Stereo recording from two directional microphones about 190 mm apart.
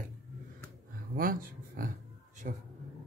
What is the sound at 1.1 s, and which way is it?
Speech, 50° right (ahead or behind).